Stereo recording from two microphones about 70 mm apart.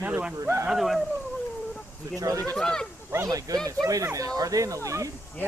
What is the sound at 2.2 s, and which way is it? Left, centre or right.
Speech, right.